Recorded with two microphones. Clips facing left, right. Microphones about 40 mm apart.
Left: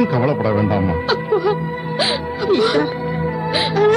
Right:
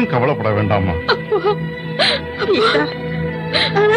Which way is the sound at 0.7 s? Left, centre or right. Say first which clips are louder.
Right 1 dB; right.